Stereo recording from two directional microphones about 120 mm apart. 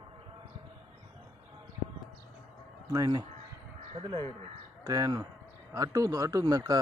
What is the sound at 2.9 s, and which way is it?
Speech, 35° right (ahead or behind).